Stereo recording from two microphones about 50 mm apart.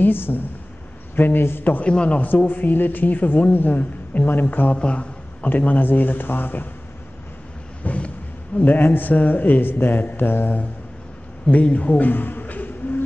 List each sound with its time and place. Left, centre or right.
0.0 s a man's voice: left
1.9 s a man's voice: left
4.7 s a sound: left
5.5 s speech: left
7.8 s a sound: left
8.5 s speech: left
11.5 s a man's voice: left